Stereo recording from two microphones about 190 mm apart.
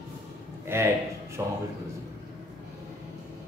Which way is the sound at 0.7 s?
15° right (ahead or behind).